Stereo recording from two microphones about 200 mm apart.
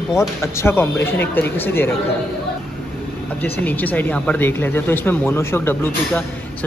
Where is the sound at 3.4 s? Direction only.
10° left (ahead or behind).